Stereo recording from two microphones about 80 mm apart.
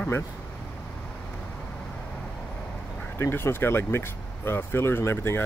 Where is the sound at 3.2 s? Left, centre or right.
Left.